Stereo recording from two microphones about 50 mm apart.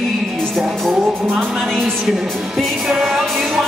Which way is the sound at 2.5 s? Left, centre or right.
Centre.